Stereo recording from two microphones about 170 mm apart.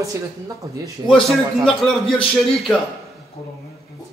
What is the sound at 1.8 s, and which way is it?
A man's voice, centre (ahead or behind).